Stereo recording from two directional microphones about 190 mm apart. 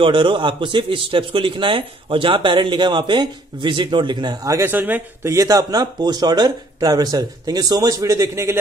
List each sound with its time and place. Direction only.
0.0 s a man's voice: 25° right (ahead or behind)